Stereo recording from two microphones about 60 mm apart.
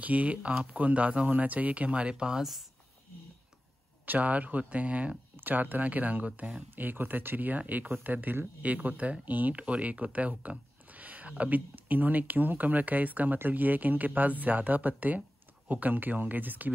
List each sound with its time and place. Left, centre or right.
0.0 s speech: right; by 2.6 s centre
4.0 s speech: right